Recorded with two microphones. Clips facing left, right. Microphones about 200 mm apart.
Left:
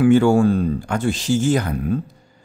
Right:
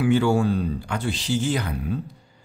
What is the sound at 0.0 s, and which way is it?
Speech, 50° left (ahead or behind).